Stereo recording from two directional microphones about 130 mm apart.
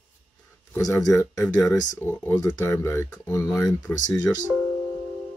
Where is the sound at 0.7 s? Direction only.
5° left (ahead or behind).